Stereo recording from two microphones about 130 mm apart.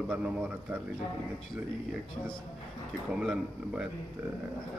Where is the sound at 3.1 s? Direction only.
5° right (ahead or behind).